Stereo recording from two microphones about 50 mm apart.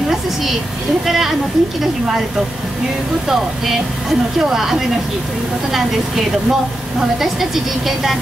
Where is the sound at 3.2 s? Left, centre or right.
Centre.